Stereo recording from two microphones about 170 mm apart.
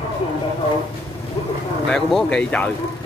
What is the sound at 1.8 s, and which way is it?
Speech, 5° left (ahead or behind).